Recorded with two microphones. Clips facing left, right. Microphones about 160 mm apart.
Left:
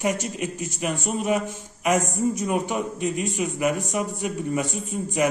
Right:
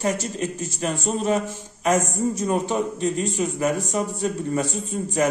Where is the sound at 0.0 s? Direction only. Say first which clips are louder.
Right 1 dB; 15° left (ahead or behind).